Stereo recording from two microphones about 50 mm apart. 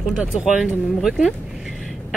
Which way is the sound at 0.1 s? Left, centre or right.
Centre.